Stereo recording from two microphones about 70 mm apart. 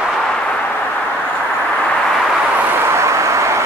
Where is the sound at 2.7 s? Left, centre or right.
Right.